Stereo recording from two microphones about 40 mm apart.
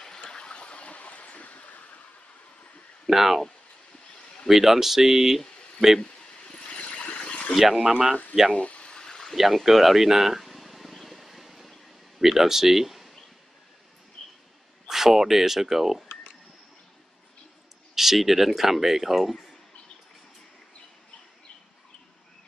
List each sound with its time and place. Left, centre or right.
0.3 s vehicle: left
3.1 s speech: centre
4.5 s speech: centre
5.9 s a sound: left
7.5 s speech: centre
7.8 s speech: centre
8.5 s a sound: left
8.9 s a sound: centre
9.3 s vehicle: centre
14.2 s a sound: centre
14.9 s speech: centre
17.9 s speech: centre